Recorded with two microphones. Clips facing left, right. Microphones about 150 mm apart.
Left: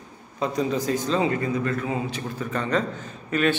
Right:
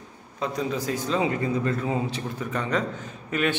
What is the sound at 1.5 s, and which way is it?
Speech, 25° right (ahead or behind).